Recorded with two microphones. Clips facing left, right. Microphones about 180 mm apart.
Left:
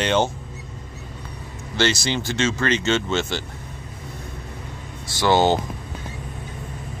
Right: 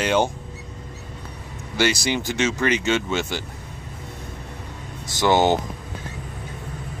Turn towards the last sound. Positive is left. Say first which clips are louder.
# even
turn(degrees=-15)  # may be behind; listen again after turning